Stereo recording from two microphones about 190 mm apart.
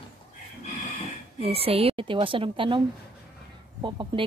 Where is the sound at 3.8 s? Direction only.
25° right (ahead or behind).